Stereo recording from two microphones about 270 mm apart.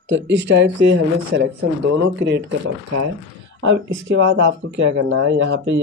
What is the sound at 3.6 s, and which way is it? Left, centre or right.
Speech, right.